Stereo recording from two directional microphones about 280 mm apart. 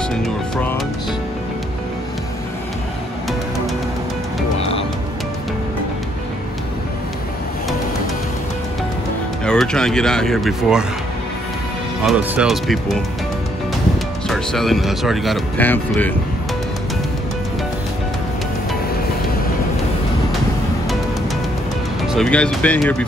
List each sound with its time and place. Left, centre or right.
0.1 s music: centre
9.4 s speech: centre
12.0 s speech: centre
14.3 s speech: centre
22.0 s speech: centre